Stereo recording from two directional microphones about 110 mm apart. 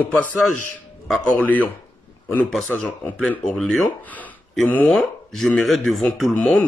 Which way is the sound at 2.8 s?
10° left (ahead or behind).